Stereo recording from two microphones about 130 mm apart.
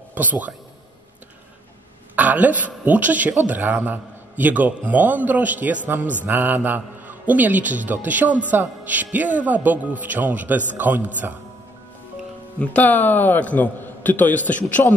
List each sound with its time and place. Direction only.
0.1 s speech: 15° right (ahead or behind)
2.1 s a man's voice: 10° right (ahead or behind)
12.5 s a man's voice: 10° left (ahead or behind)